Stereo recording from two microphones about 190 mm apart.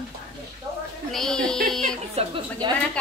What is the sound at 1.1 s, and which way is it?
Speech, 5° left (ahead or behind).